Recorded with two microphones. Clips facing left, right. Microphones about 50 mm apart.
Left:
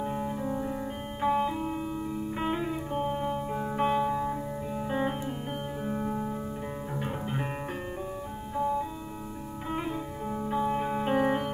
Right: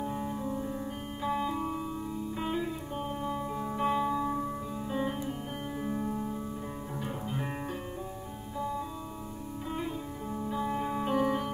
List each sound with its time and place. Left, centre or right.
0.0 s music: left
4.7 s music: left
5.8 s music: left
9.7 s sitar: left
10.6 s music: left
11.1 s music: left